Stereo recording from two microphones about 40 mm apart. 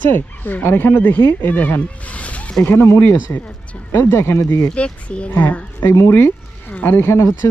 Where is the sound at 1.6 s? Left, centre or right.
Left.